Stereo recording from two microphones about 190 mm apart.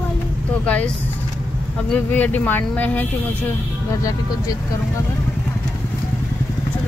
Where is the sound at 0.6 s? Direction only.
5° left (ahead or behind).